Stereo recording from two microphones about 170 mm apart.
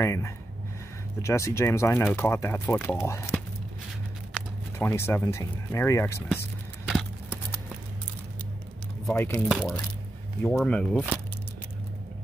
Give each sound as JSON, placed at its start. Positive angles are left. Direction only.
{"t": 0.0, "sound": "speech", "side_deg": 15}
{"t": 4.3, "sound": "speech", "side_deg": 15}
{"t": 9.1, "sound": "speech", "side_deg": 15}
{"t": 9.5, "sound": "speech", "side_deg": 0}